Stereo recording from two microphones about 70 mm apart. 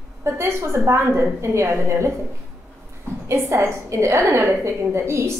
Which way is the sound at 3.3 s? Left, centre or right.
Right.